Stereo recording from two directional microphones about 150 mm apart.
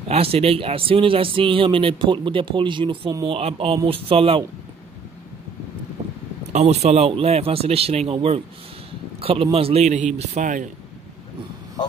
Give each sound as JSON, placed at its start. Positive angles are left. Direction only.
{"t": 0.1, "sound": "speech", "side_deg": -40}
{"t": 6.5, "sound": "speech", "side_deg": -45}